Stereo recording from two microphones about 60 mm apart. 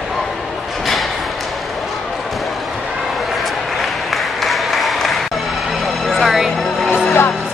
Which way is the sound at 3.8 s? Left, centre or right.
Centre.